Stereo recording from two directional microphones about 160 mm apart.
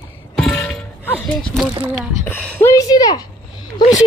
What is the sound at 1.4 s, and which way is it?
Speech, 5° left (ahead or behind).